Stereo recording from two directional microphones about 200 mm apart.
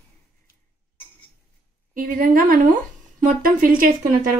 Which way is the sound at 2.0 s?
45° right (ahead or behind).